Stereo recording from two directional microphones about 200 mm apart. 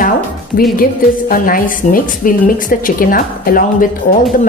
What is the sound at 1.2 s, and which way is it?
A woman's voice, 45° left (ahead or behind).